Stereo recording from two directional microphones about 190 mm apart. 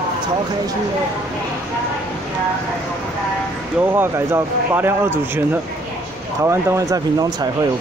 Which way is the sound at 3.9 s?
10° right (ahead or behind).